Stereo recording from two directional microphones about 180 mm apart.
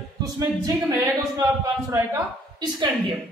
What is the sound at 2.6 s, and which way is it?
Speech, 25° right (ahead or behind).